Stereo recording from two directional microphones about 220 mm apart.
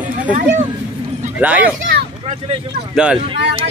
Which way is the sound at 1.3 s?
5° right (ahead or behind).